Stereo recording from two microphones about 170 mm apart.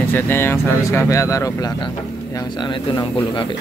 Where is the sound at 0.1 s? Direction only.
15° left (ahead or behind).